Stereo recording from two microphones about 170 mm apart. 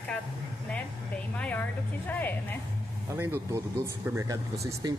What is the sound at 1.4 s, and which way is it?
Music, 10° left (ahead or behind).